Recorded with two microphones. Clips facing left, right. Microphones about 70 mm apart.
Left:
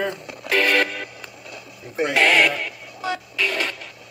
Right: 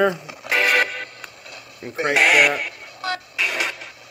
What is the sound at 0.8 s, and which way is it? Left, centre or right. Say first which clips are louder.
Music: even; centre.